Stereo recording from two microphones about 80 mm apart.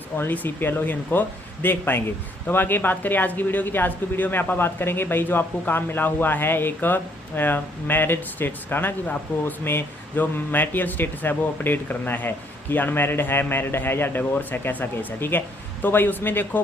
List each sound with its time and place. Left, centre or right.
0.2 s speech: left